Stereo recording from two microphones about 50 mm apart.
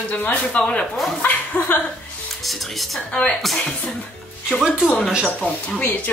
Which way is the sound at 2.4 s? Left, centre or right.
Centre.